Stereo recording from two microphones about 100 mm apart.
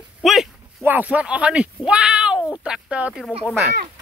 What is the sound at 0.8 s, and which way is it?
Speech, 15° right (ahead or behind).